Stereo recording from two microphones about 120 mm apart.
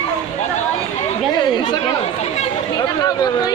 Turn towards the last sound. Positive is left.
turn(degrees=35)  # may be behind; listen again after turning